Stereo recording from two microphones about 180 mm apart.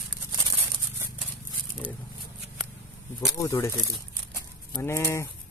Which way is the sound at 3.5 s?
15° left (ahead or behind).